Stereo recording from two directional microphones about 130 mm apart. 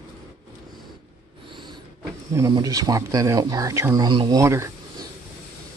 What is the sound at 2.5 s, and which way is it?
Speech, 30° right (ahead or behind).